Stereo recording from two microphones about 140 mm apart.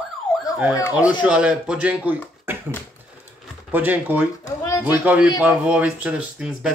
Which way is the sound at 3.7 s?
15° right (ahead or behind).